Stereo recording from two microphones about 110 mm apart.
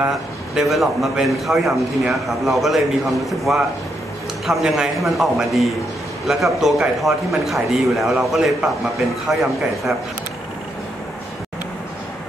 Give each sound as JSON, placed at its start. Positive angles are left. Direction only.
{"t": 0.6, "sound": "a man's voice", "side_deg": 0}